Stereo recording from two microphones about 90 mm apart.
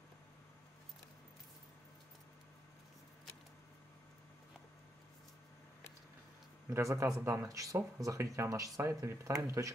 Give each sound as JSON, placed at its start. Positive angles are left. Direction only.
{"t": 6.7, "sound": "speech", "side_deg": -35}